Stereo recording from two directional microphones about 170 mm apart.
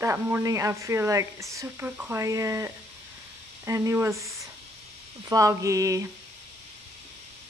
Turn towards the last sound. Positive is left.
turn(degrees=-20)  # may be behind; listen again after turning